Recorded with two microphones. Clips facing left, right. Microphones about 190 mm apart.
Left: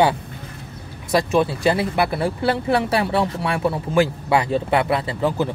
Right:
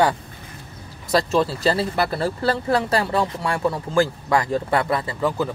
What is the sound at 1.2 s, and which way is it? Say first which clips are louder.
Speech: left 2 dB; 15° left (ahead or behind).